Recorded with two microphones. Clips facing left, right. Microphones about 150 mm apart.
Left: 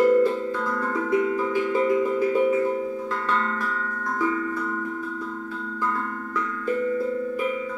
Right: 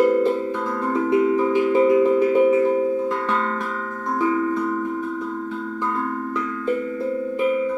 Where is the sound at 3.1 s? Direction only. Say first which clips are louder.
Right 3 dB; 20° right (ahead or behind).